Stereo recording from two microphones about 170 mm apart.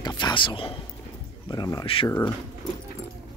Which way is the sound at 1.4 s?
25° left (ahead or behind).